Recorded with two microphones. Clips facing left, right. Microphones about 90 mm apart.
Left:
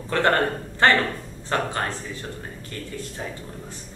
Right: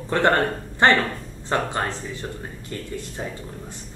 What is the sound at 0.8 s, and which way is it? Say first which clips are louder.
Speech: right 1 dB; 20° right (ahead or behind).